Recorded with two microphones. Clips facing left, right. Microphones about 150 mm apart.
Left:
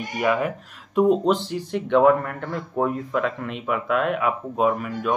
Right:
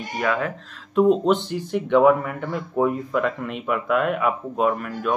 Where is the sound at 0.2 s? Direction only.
10° left (ahead or behind).